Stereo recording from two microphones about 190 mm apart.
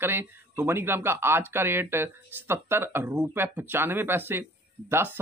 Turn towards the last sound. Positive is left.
turn(degrees=-10)  # may be behind; listen again after turning